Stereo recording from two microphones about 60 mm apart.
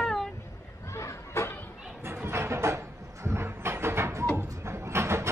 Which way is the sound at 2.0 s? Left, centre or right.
Right.